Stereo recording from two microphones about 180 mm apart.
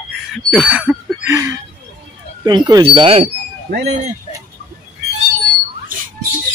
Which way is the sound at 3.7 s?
65° right (ahead or behind).